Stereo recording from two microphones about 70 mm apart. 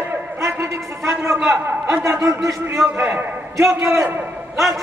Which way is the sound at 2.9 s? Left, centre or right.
Right.